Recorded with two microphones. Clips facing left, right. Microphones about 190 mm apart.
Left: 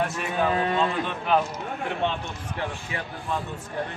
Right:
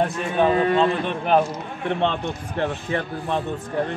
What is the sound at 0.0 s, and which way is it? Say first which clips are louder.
Speech: right 5 dB; 30° right (ahead or behind).